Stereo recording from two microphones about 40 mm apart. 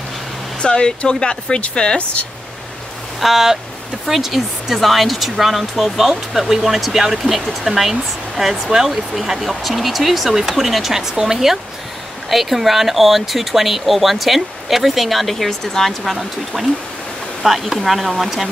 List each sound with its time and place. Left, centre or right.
0.6 s speech: left
3.2 s speech: centre